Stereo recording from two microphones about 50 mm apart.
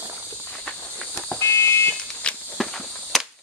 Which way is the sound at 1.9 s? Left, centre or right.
Left.